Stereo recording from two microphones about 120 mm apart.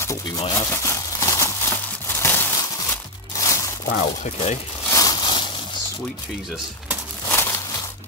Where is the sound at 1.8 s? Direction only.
20° left (ahead or behind).